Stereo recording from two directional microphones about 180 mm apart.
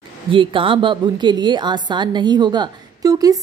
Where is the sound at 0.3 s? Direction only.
30° right (ahead or behind).